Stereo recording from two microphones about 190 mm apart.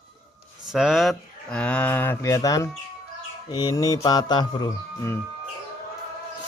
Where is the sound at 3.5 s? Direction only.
20° left (ahead or behind).